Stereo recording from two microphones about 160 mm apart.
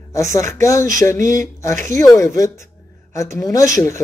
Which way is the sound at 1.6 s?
20° left (ahead or behind).